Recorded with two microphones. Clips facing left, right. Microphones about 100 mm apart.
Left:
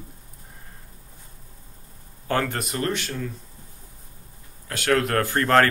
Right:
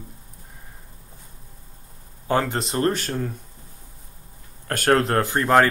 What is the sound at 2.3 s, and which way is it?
Speech, 20° right (ahead or behind).